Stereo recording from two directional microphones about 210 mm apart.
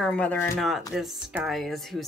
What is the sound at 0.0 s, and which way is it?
Speech, 5° left (ahead or behind).